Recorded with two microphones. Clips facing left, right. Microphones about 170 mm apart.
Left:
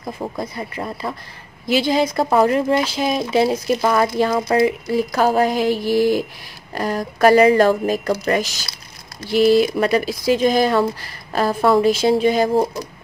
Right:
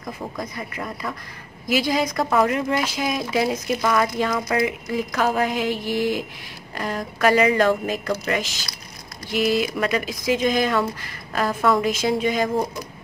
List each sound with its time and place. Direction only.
0.0 s speech: 30° left (ahead or behind)